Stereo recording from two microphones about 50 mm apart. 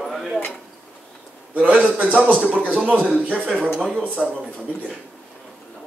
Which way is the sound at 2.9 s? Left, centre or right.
Centre.